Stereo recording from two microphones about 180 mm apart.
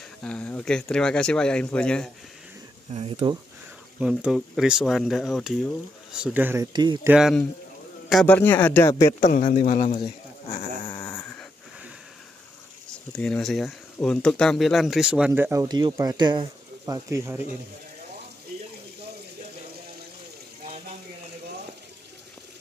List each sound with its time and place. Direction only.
0.2 s speech: 5° left (ahead or behind)
2.9 s speech: 35° right (ahead or behind)
4.0 s speech: 5° right (ahead or behind)
6.6 s speech: 25° right (ahead or behind)
7.0 s speech: 5° right (ahead or behind); by 9.1 s 15° left (ahead or behind)
9.3 s speech: 45° left (ahead or behind)
9.9 s sheep: 30° left (ahead or behind)
11.0 s dog: 15° left (ahead or behind)
13.1 s speech: 5° left (ahead or behind); by 17.4 s 15° right (ahead or behind)